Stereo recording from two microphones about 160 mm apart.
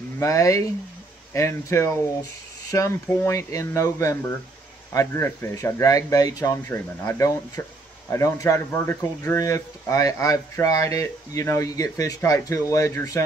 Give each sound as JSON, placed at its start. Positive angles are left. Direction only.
{"t": 0.2, "sound": "speech", "side_deg": 20}